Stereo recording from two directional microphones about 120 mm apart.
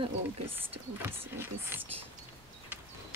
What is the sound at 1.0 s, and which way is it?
Speech, 20° right (ahead or behind).